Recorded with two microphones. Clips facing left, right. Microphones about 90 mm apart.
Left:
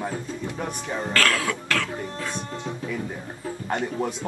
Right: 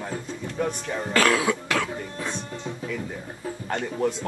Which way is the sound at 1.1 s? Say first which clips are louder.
Right 4 dB; 15° right (ahead or behind).